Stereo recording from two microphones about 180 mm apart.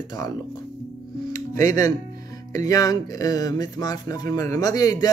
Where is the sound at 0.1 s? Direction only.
20° left (ahead or behind).